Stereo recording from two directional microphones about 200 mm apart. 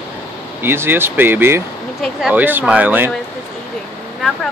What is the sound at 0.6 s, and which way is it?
Speech, 10° right (ahead or behind).